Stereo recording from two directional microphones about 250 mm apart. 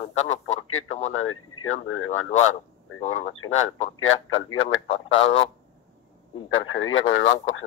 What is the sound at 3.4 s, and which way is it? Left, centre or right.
Speech, left.